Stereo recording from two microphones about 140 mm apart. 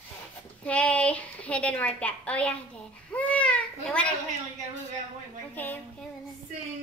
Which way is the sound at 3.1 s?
10° left (ahead or behind).